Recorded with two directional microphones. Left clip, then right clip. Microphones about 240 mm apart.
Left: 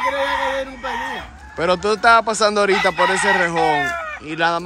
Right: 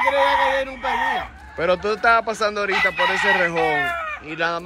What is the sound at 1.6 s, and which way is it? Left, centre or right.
Chicken, centre.